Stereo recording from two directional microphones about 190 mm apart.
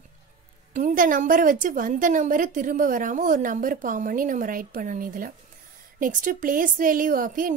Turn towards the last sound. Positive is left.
turn(degrees=-45)  # may be behind; listen again after turning